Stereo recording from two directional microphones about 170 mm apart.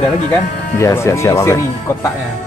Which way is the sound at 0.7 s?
15° left (ahead or behind).